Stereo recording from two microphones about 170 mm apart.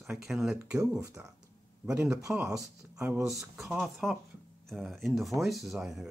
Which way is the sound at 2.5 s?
5° right (ahead or behind).